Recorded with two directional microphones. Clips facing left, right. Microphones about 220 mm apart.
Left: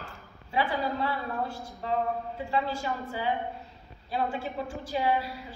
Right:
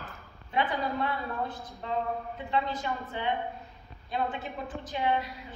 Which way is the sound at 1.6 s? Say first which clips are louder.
Left 3 dB; 30° left (ahead or behind).